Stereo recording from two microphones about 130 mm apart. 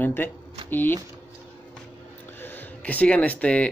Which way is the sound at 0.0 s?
15° left (ahead or behind).